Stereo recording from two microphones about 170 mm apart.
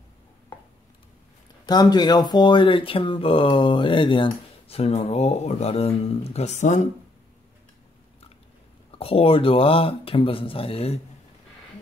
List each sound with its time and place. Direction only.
1.7 s speech: 25° left (ahead or behind); by 6.9 s 45° left (ahead or behind)
8.9 s speech: 35° left (ahead or behind)